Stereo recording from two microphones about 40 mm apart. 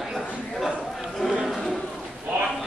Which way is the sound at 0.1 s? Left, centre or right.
Centre.